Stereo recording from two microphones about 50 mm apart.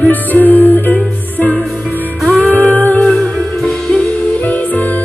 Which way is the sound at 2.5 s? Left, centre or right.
Left.